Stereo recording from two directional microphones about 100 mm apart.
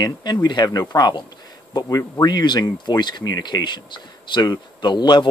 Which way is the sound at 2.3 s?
45° left (ahead or behind).